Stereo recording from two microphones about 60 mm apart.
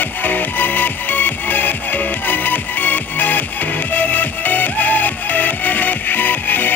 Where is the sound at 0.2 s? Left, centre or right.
Left.